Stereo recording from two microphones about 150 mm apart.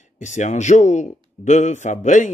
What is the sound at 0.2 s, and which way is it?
Speech, 55° left (ahead or behind).